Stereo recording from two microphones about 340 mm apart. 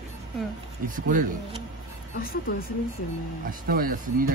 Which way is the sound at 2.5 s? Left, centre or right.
Left.